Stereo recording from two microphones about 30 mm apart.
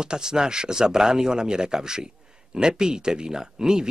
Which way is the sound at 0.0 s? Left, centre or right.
Right.